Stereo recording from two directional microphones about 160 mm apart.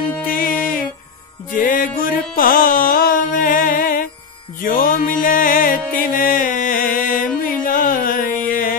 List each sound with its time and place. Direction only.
0.3 s music: 65° left (ahead or behind)